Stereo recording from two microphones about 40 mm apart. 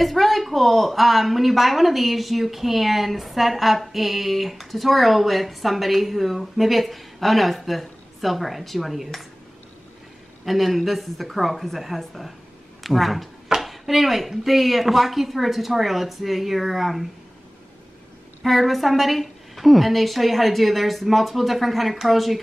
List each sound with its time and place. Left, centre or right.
0.0 s a woman's voice: centre
10.4 s a woman's voice: centre
13.5 s a sound: centre
14.4 s a woman's voice: centre
18.4 s a woman's voice: centre